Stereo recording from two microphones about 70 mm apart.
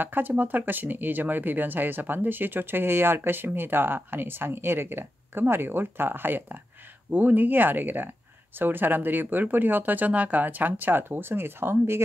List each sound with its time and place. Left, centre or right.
0.0 s speech: right